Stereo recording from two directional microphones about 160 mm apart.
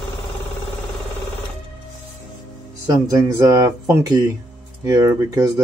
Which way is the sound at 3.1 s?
20° right (ahead or behind).